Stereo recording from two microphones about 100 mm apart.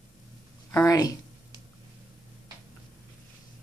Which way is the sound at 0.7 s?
30° left (ahead or behind).